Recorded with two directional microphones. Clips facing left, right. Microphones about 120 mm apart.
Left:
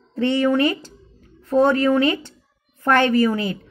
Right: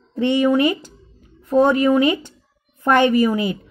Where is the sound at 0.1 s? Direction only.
15° right (ahead or behind).